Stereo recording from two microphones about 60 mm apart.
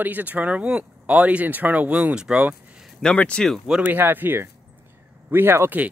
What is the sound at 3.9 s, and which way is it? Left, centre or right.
Speech, right.